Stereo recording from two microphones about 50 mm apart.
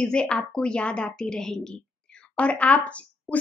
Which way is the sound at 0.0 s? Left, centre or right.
Centre.